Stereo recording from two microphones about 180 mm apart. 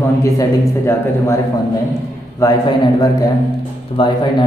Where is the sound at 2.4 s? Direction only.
15° left (ahead or behind).